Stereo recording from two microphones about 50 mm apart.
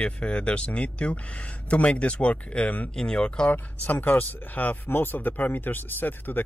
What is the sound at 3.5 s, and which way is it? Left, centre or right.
Speech, left.